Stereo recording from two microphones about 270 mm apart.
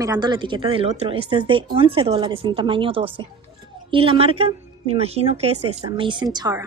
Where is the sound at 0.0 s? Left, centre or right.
Centre.